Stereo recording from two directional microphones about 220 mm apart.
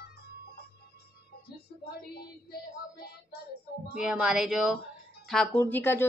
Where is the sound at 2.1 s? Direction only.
45° left (ahead or behind).